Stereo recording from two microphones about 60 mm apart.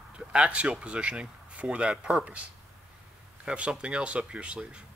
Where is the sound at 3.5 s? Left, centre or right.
Centre.